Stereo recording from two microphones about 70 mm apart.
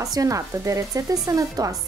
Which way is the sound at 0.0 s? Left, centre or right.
Right.